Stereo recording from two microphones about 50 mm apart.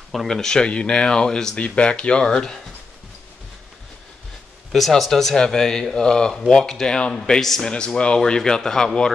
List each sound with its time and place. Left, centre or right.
0.3 s speech: centre
1.6 s speech: left
4.7 s speech: centre
7.7 s speech: centre